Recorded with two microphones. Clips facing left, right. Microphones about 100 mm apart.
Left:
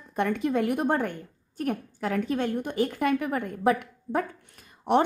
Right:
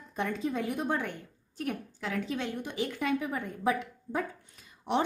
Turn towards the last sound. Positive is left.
turn(degrees=55)  # may be behind; listen again after turning